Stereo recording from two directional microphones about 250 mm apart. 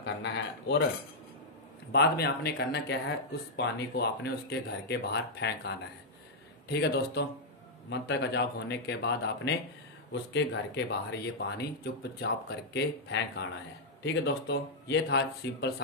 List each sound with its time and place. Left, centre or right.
0.0 s speech: left
1.9 s speech: left